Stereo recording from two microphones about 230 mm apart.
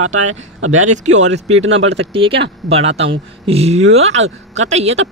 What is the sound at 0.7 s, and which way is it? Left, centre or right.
Speech, right.